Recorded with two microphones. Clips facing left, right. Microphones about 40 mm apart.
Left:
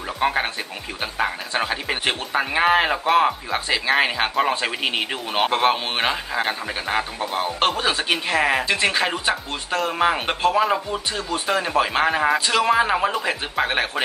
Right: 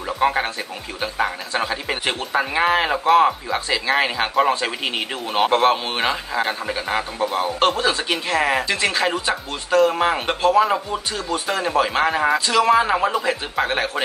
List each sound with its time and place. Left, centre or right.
1.6 s a man's voice: centre
3.5 s a man's voice: centre
7.3 s speech: left
9.8 s a man's voice: centre
12.4 s speech: left
12.6 s a man's voice: centre
12.9 s speech: centre
13.2 s a man's voice: centre